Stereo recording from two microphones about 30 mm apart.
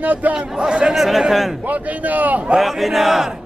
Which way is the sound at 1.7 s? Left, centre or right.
Right.